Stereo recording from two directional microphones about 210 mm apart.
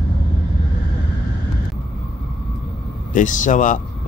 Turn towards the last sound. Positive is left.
turn(degrees=40)  # may be behind; listen again after turning